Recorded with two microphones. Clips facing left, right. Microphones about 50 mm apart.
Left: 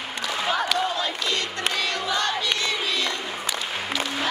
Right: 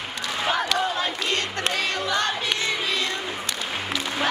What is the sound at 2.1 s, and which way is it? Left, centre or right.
Crowd, right.